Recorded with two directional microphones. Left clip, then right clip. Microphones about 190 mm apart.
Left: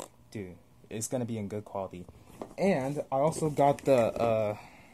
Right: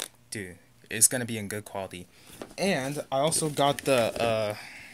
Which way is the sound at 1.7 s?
10° right (ahead or behind).